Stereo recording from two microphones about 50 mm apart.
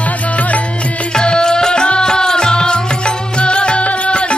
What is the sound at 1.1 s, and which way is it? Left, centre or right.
Music, centre.